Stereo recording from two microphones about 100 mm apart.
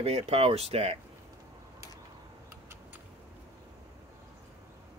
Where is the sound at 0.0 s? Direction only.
90° right.